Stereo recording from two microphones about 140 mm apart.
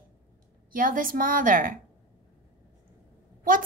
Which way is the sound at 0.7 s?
80° right.